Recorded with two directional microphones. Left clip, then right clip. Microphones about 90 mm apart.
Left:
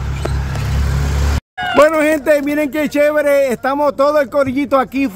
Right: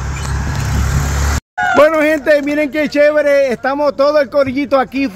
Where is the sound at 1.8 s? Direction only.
5° left (ahead or behind).